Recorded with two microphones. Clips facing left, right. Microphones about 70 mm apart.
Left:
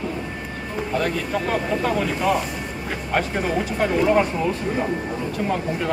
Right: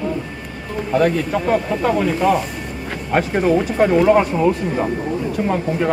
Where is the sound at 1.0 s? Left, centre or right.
Centre.